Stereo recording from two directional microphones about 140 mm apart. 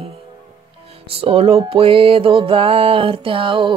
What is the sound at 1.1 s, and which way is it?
Music, 45° right (ahead or behind).